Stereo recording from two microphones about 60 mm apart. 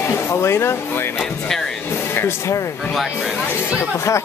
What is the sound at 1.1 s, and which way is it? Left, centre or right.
Speech, centre.